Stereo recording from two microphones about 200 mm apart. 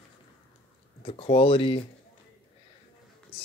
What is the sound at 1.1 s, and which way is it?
Speech, 30° left (ahead or behind).